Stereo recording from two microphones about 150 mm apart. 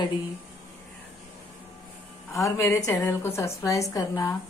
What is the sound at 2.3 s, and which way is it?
A woman's voice, 20° left (ahead or behind).